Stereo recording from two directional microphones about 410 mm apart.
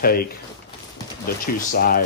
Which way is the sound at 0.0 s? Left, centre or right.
Left.